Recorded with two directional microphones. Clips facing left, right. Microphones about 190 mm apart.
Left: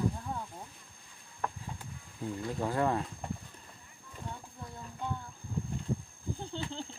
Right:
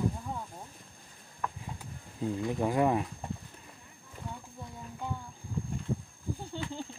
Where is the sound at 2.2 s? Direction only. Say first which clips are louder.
Right 4 dB; 15° right (ahead or behind).